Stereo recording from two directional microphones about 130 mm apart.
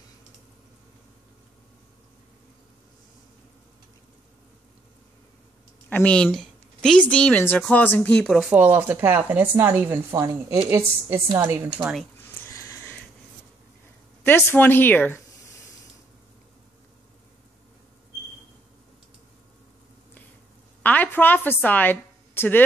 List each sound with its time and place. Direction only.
5.9 s a woman's voice: 10° left (ahead or behind)
8.5 s a woman's voice: 15° right (ahead or behind)
10.1 s a woman's voice: 30° right (ahead or behind)
11.8 s speech: centre (ahead or behind)
12.2 s a sound: 15° left (ahead or behind)
14.2 s a woman's voice: 15° left (ahead or behind)
20.8 s a woman's voice: 15° left (ahead or behind)